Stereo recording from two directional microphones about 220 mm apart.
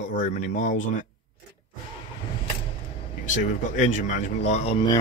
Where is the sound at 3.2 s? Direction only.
35° left (ahead or behind).